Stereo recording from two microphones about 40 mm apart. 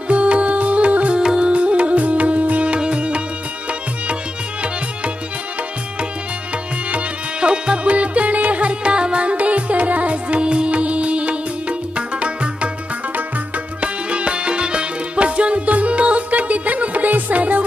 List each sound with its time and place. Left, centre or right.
0.1 s music: right
1.2 s music: centre
1.5 s music: right
6.9 s music: right
13.7 s music: right